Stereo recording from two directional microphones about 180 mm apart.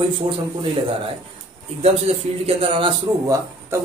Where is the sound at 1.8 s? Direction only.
35° right (ahead or behind).